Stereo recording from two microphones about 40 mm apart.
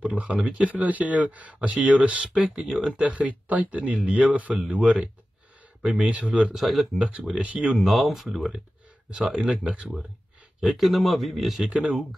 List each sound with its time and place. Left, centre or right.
0.0 s speech: right
6.5 s speech: centre
7.0 s speech: right
7.7 s speech: centre
9.1 s speech: right
10.8 s speech: centre
11.7 s speech: right